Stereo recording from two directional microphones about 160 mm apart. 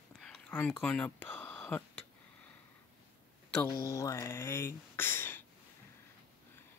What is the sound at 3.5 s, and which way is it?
Speech, 15° left (ahead or behind).